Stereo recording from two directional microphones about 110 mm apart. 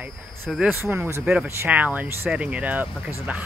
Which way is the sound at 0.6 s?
20° right (ahead or behind).